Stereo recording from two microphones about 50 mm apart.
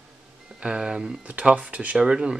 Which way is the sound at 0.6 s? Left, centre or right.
Centre.